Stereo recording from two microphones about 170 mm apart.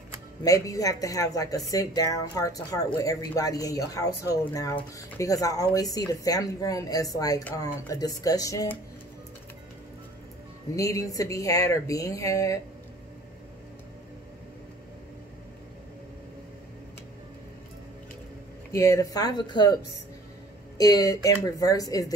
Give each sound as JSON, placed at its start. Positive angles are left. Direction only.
{"t": 0.4, "sound": "speech", "side_deg": 20}
{"t": 10.8, "sound": "speech", "side_deg": 20}
{"t": 18.7, "sound": "speech", "side_deg": 20}